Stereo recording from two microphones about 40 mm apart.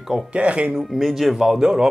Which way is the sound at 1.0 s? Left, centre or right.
Centre.